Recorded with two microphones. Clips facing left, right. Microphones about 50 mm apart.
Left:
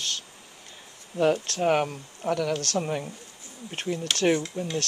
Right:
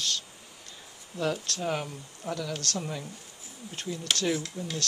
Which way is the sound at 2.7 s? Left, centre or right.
Left.